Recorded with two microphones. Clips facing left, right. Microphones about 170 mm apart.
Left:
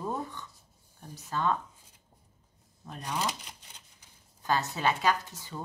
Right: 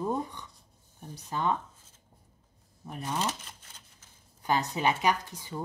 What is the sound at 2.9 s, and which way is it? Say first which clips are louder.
Speech: right 3 dB; 15° right (ahead or behind).